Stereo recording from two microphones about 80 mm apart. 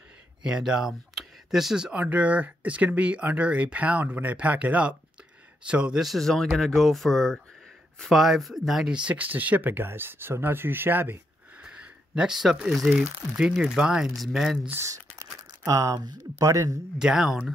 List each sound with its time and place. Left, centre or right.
0.4 s speech: centre
1.9 s speech: centre
6.0 s speech: centre; by 11.1 s right
11.6 s a sound: centre
12.6 s speech: centre
14.8 s crumpling: right
15.6 s speech: right
17.0 s speech: centre